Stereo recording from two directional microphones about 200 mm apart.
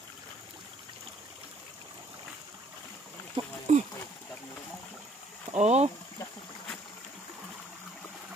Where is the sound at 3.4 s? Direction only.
25° right (ahead or behind).